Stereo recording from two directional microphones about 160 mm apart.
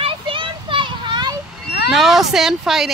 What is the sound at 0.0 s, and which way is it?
Children playing, 35° right (ahead or behind).